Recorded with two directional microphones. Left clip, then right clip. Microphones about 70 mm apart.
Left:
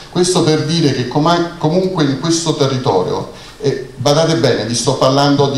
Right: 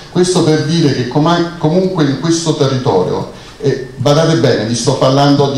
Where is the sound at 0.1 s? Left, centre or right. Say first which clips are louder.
Right 2 dB; left.